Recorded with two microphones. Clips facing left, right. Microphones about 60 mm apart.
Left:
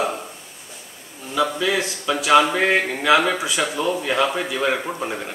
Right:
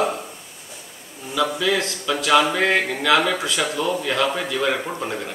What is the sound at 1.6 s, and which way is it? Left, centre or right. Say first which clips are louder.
Speech: even; centre.